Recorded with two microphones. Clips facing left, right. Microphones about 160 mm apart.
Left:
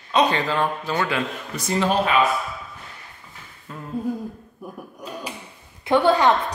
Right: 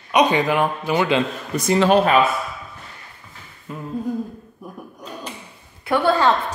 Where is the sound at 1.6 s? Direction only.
90° right.